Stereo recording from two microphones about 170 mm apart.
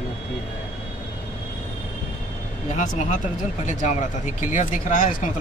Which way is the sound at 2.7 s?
45° left (ahead or behind).